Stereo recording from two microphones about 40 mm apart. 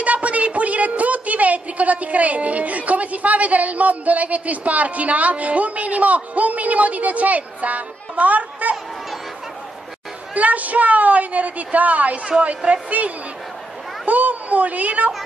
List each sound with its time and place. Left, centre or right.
0.0 s a woman's voice: right
10.3 s a woman's voice: right
12.9 s a woman's voice: right